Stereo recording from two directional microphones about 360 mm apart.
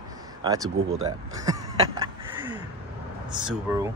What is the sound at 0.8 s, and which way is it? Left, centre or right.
Speech, right.